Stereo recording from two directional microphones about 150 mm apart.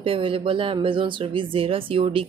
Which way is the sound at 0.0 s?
35° right (ahead or behind).